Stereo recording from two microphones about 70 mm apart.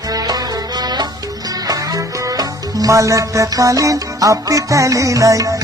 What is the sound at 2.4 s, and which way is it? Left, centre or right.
Music, right.